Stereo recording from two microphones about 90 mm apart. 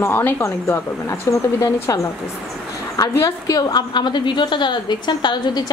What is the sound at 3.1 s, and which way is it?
A woman's voice, 40° left (ahead or behind).